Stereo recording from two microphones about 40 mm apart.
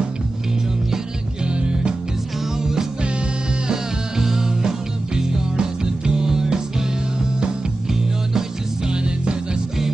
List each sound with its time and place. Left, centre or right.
0.9 s music: right